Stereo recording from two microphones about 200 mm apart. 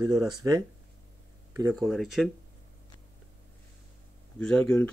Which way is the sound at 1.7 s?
Centre (ahead or behind).